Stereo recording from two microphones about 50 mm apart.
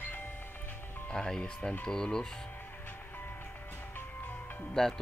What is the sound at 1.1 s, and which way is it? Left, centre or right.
Speech, centre.